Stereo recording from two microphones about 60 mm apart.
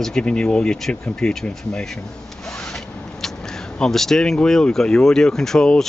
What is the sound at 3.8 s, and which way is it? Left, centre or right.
Speech, centre.